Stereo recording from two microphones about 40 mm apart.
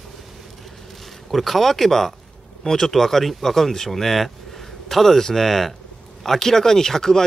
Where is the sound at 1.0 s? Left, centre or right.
Centre.